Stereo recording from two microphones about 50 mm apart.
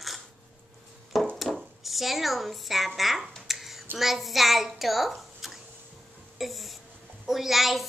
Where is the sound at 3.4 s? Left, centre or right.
Centre.